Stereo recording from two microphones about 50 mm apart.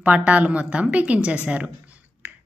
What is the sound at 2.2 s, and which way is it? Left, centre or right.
Finger snapping, right.